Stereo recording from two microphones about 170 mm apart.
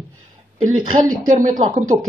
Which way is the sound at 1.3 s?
50° right (ahead or behind).